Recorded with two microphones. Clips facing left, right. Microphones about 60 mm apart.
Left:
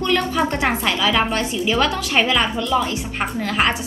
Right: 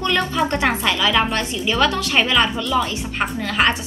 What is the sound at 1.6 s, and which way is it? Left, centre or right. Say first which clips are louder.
A woman's voice: right 2 dB; centre.